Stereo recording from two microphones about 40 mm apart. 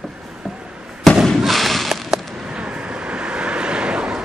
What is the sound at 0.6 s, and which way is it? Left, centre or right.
Fireworks, right.